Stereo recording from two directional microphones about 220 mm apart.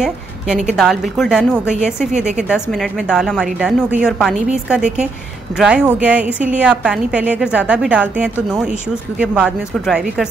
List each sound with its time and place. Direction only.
0.0 s a woman's voice: 5° right (ahead or behind)